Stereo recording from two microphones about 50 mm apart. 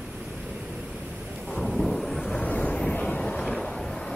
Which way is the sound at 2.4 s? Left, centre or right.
Left.